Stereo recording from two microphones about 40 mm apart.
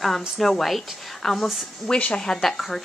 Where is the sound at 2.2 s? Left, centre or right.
Centre.